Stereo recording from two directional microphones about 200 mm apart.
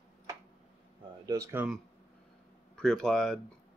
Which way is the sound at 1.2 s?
15° right (ahead or behind).